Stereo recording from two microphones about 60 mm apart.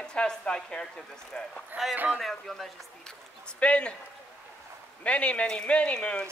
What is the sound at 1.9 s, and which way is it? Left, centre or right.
Speech, right.